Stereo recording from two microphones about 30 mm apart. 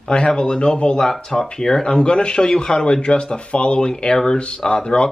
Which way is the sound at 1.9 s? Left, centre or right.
Left.